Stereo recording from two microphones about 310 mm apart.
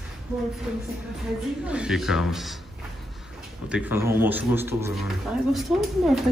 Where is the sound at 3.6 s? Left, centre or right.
Centre.